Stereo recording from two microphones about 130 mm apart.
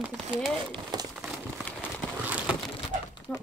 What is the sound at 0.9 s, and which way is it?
Crumpling, 30° right (ahead or behind).